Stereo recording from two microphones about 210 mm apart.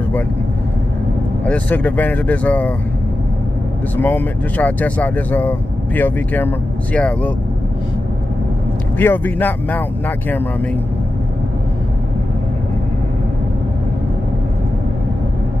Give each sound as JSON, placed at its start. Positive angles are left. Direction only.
{"t": 1.4, "sound": "speech", "side_deg": 5}
{"t": 3.9, "sound": "speech", "side_deg": 10}
{"t": 8.9, "sound": "speech", "side_deg": 10}